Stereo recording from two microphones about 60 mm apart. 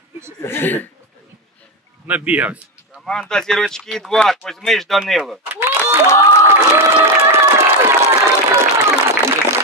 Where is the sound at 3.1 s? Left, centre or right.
Centre.